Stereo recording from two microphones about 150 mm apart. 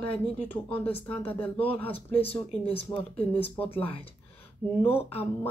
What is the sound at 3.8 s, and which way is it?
Speech, 40° left (ahead or behind).